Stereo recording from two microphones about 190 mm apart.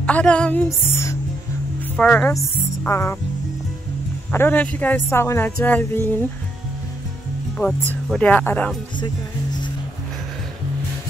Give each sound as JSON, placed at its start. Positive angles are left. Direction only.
{"t": 0.0, "sound": "speech", "side_deg": 5}
{"t": 4.3, "sound": "a woman's voice", "side_deg": 10}
{"t": 7.6, "sound": "a woman's voice", "side_deg": 15}
{"t": 8.9, "sound": "speech", "side_deg": 25}